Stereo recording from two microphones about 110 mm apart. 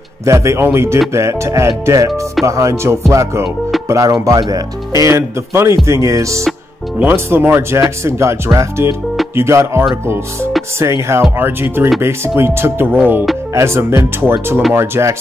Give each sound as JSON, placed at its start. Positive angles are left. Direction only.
{"t": 0.2, "sound": "speech", "side_deg": -25}